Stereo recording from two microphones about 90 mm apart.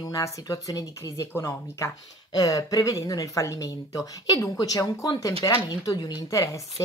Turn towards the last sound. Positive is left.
turn(degrees=35)  # may be behind; listen again after turning